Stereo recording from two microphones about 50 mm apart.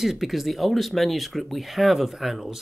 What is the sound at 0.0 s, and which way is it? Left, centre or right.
Speech, centre.